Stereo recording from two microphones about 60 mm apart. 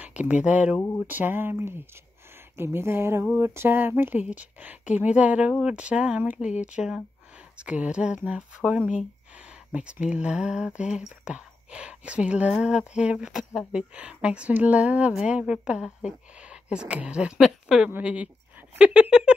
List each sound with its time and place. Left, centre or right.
0.0 s speech: right
1.0 s a sound: right
2.5 s speech: right; by 17.3 s centre
17.4 s speech: centre
18.0 s speech: right